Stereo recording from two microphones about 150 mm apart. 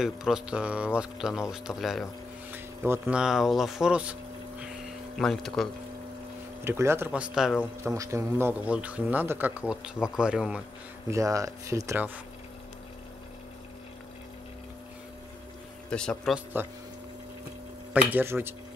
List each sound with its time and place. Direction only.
0.0 s speech: 5° right (ahead or behind)
2.5 s a sound: 10° right (ahead or behind)
5.2 s speech: centre (ahead or behind)
6.6 s speech: 15° right (ahead or behind)
7.8 s speech: 20° right (ahead or behind)
11.1 s speech: 20° right (ahead or behind)
15.9 s speech: 5° left (ahead or behind)
16.6 s speech: 15° right (ahead or behind)
18.1 s speech: 15° right (ahead or behind)